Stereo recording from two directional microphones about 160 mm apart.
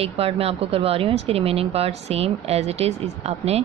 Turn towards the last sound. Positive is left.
turn(degrees=-40)  # may be behind; listen again after turning